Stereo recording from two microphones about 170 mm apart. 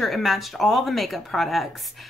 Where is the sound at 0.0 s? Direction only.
Centre (ahead or behind).